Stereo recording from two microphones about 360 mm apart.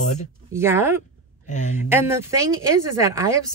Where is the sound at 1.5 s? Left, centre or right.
Centre.